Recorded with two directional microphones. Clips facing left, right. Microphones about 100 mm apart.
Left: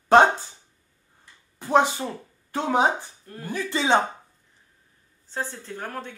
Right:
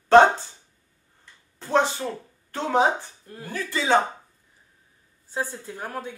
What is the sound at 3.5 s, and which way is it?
Speech, 20° left (ahead or behind).